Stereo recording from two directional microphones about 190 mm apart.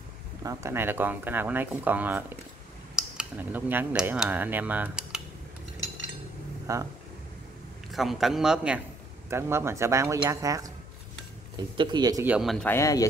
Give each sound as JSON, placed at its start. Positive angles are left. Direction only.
{"t": 0.4, "sound": "speech", "side_deg": -15}
{"t": 6.7, "sound": "speech", "side_deg": -15}
{"t": 7.9, "sound": "a man's voice", "side_deg": 0}
{"t": 11.7, "sound": "speech", "side_deg": -25}
{"t": 12.3, "sound": "speech", "side_deg": 0}